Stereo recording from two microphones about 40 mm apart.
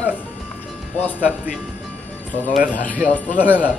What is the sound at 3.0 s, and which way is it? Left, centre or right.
Speech, right.